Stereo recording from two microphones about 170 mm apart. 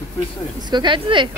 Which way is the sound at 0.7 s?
25° right (ahead or behind).